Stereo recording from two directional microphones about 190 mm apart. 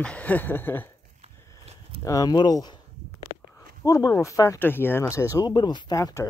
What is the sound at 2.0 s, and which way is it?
Speech, 20° left (ahead or behind).